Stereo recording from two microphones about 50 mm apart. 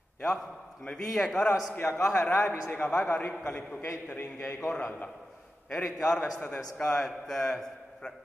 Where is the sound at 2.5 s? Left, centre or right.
Left.